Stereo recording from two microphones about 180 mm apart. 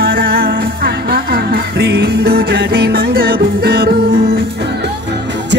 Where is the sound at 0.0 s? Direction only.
55° right (ahead or behind).